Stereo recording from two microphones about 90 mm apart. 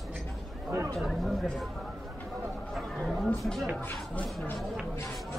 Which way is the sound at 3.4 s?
Centre (ahead or behind).